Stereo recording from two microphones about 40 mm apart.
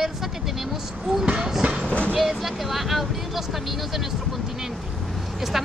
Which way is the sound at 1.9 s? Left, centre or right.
Left.